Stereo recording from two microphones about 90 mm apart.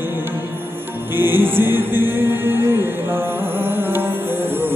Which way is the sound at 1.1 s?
25° right (ahead or behind).